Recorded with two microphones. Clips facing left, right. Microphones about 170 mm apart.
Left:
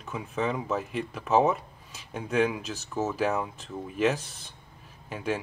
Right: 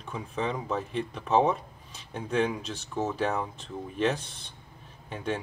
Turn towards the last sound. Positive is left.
turn(degrees=5)  # may be behind; listen again after turning